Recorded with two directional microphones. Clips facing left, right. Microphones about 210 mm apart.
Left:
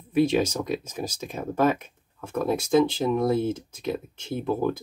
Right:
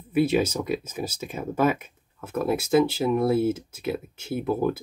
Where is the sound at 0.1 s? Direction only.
5° right (ahead or behind).